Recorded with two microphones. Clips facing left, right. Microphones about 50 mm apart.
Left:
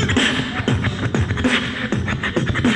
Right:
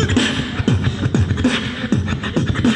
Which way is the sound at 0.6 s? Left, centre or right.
Left.